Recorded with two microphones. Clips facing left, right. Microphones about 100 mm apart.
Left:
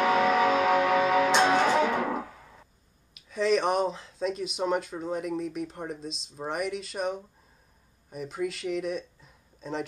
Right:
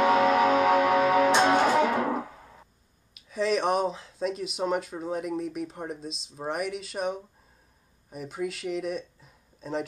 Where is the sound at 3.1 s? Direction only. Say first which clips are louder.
Left 1 dB; centre (ahead or behind).